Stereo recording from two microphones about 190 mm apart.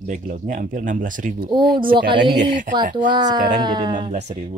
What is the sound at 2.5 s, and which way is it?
Speech, 45° right (ahead or behind).